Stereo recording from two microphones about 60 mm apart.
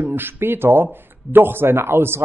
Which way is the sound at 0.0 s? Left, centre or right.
Right.